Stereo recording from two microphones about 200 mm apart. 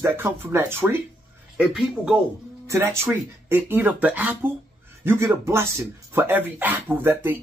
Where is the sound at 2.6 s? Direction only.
15° right (ahead or behind).